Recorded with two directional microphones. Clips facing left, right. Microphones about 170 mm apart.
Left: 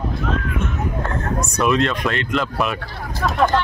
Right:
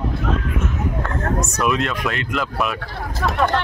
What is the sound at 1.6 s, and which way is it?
Speech, 5° right (ahead or behind).